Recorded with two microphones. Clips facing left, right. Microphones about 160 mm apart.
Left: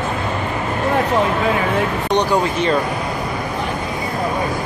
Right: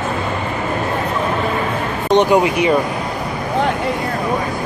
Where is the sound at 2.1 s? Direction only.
20° right (ahead or behind).